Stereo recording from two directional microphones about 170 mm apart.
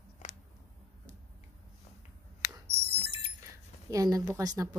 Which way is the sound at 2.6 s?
40° right (ahead or behind).